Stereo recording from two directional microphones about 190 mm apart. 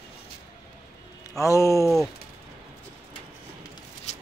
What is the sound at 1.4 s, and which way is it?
Speech, 15° left (ahead or behind).